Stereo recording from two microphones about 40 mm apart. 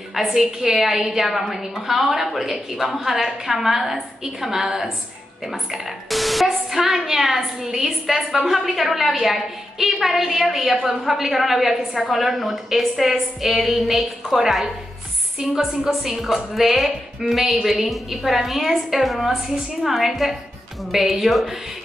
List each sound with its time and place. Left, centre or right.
0.1 s a woman's voice: centre
15.4 s a woman's voice: centre